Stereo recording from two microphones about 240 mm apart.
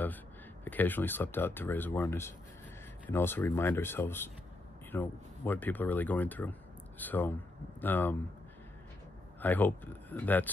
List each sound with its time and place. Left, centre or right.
0.7 s speech: centre
9.4 s speech: centre